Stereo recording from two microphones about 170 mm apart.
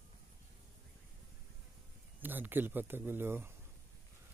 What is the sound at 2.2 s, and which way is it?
Speech, 10° right (ahead or behind).